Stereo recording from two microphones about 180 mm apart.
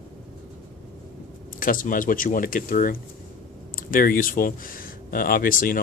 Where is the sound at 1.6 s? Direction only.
50° left (ahead or behind).